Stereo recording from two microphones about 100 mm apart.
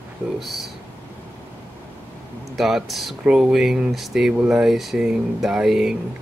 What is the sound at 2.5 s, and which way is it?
Speech, centre (ahead or behind).